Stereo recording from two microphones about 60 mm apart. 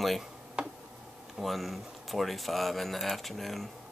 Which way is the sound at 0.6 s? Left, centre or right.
Centre.